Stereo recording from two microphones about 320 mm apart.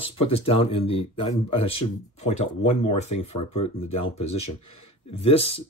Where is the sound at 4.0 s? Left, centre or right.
Centre.